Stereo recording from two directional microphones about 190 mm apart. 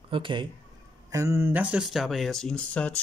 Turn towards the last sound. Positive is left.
turn(degrees=5)  # may be behind; listen again after turning